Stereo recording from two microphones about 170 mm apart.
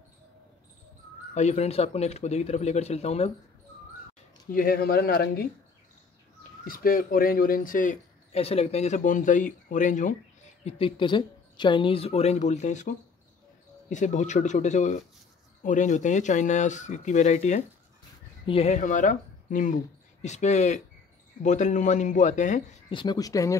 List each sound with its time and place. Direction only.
1.3 s a woman's voice: 40° left (ahead or behind)
4.5 s speech: 55° left (ahead or behind)
6.6 s speech: 60° left (ahead or behind)
10.6 s a woman's voice: 30° left (ahead or behind); by 22.6 s 45° left (ahead or behind)
22.8 s speech: 25° left (ahead or behind)